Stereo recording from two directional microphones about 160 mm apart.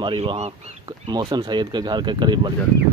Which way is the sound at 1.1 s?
25° right (ahead or behind).